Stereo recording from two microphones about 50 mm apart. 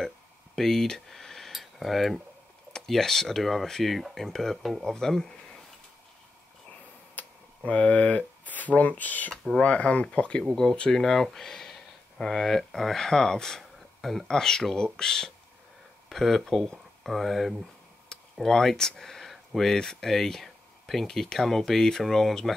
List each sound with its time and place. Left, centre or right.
0.6 s speech: centre
7.2 s tick-tock: left
7.6 s speech: left
9.3 s speech: centre
9.6 s speech: left; by 22.5 s centre